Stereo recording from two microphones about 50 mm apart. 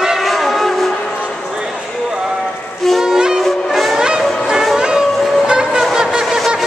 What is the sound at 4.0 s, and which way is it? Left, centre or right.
Music, centre.